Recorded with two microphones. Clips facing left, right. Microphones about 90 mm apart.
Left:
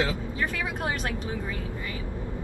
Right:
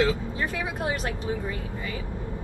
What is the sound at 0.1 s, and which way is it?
Speech, 20° right (ahead or behind).